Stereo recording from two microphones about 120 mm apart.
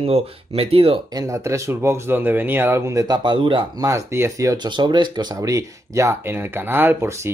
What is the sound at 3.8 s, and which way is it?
Speech, 25° right (ahead or behind).